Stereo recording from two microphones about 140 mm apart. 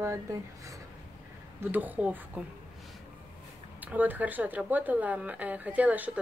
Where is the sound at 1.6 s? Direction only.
15° right (ahead or behind).